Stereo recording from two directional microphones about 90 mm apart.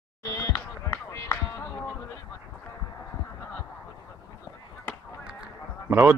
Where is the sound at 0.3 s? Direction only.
35° left (ahead or behind).